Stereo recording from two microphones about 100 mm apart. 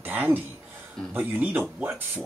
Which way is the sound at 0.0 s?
20° right (ahead or behind).